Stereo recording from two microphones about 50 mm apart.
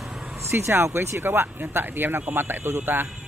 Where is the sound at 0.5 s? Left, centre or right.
Right.